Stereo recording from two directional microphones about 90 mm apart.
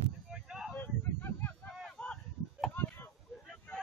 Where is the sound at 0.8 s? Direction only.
25° left (ahead or behind).